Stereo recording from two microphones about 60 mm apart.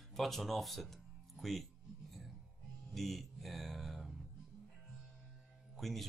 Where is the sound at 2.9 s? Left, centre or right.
Centre.